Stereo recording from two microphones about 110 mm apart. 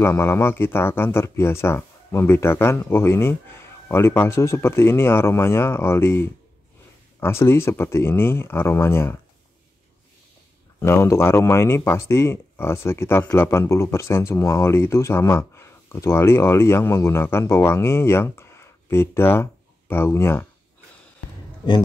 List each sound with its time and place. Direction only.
0.0 s speech: 25° left (ahead or behind)
10.8 s speech: 25° left (ahead or behind)